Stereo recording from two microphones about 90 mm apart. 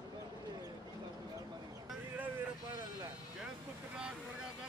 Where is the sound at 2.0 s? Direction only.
20° right (ahead or behind).